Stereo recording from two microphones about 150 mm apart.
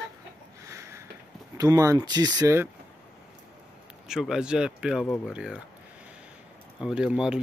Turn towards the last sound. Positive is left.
turn(degrees=-5)  # may be behind; listen again after turning